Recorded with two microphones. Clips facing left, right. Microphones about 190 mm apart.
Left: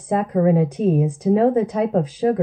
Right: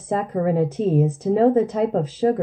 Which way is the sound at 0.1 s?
15° left (ahead or behind).